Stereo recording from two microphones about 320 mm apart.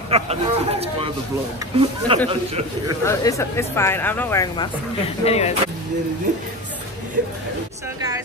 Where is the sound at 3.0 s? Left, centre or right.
Centre.